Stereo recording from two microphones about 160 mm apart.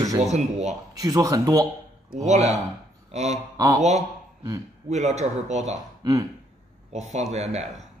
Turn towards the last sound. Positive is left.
turn(degrees=-45)  # may be behind; listen again after turning